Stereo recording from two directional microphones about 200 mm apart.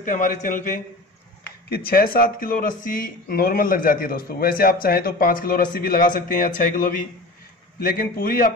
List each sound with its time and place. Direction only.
0.0 s a man's voice: 40° left (ahead or behind)